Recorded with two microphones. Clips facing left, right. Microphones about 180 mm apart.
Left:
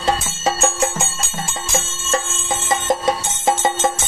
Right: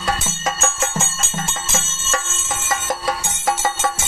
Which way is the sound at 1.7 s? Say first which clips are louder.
Left 7 dB; 30° left (ahead or behind).